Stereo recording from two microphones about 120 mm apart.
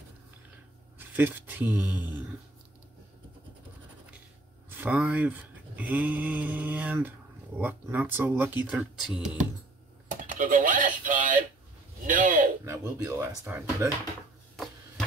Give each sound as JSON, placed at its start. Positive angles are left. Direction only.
{"t": 0.9, "sound": "speech", "side_deg": -15}
{"t": 4.6, "sound": "speech", "side_deg": -15}
{"t": 10.0, "sound": "a sound", "side_deg": -90}
{"t": 12.1, "sound": "speech", "side_deg": -90}
{"t": 12.6, "sound": "speech", "side_deg": -25}